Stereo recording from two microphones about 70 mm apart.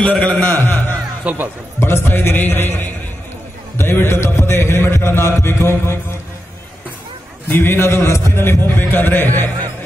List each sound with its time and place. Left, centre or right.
0.0 s a man's voice: centre
0.4 s a sound: left
1.2 s speech: right
1.8 s mantra: left
7.4 s mantra: left